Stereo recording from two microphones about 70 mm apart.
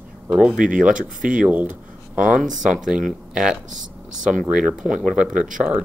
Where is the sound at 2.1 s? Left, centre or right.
Centre.